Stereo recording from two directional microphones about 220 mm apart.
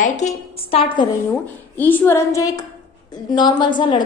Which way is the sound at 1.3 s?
10° left (ahead or behind).